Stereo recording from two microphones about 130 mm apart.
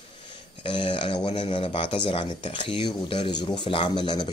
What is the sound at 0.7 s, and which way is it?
Speech, 40° left (ahead or behind).